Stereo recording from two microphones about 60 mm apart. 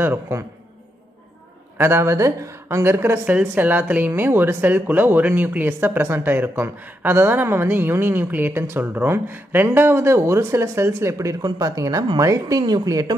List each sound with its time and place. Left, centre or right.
1.8 s speech: right
2.8 s speech: right
3.3 s a woman's voice: right